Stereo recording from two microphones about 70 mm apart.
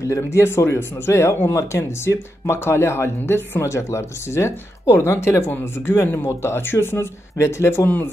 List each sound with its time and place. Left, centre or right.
0.0 s speech: left
5.5 s speech: left
5.9 s speech: left